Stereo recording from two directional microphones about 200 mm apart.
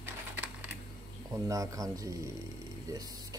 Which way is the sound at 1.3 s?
15° right (ahead or behind).